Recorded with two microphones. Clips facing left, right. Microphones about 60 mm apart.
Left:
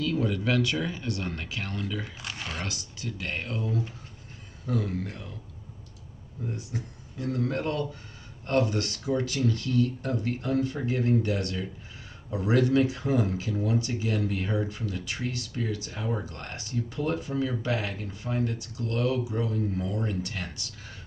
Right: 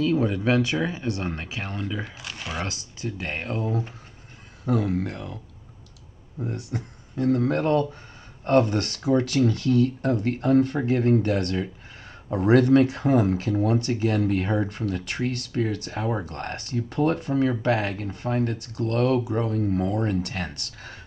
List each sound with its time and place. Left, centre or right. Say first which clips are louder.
0.0 s speech: right 5 dB; right
2.0 s speech: right 2 dB; centre
2.6 s speech: right 4 dB; right
4.6 s speech: right 6 dB; right
6.4 s speech: right 4 dB; right